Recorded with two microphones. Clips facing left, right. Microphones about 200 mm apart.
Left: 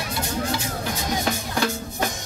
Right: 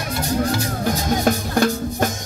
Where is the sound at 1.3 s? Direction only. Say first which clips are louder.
Right 9 dB; 45° right (ahead or behind).